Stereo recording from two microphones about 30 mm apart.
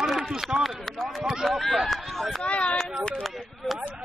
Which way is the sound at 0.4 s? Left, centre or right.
Centre.